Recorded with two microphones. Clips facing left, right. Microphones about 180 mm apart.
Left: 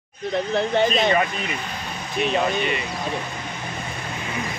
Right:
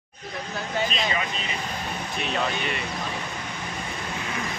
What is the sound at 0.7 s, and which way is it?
Speech, 60° left (ahead or behind).